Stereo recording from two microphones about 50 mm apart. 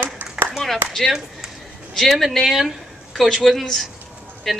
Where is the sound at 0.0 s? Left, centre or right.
Right.